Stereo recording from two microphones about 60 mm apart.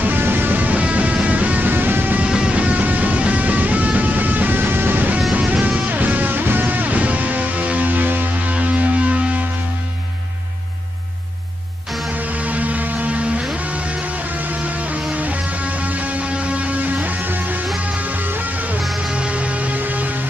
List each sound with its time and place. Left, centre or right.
0.0 s music: right
2.2 s music: centre
12.2 s music: right
18.8 s music: centre
19.1 s music: centre